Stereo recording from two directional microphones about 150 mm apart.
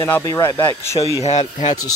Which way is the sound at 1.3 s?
45° left (ahead or behind).